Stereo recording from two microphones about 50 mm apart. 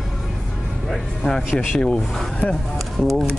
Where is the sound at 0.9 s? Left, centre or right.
Centre.